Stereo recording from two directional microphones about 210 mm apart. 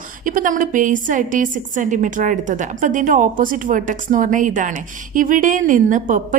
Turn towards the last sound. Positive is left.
turn(degrees=-40)  # may be behind; listen again after turning